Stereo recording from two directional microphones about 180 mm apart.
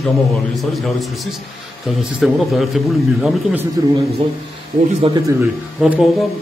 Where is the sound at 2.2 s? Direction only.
Centre (ahead or behind).